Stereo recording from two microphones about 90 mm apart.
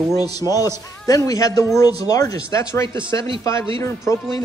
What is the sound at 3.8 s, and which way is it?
Speech, 35° left (ahead or behind).